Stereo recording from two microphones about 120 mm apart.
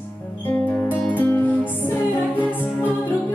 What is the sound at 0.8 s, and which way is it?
Music, 15° left (ahead or behind).